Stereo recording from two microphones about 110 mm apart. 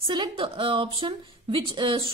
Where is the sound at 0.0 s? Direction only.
50° right (ahead or behind).